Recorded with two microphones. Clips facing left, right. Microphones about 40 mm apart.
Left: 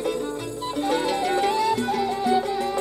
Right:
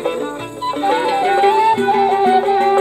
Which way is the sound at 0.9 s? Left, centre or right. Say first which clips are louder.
Right 8 dB; right.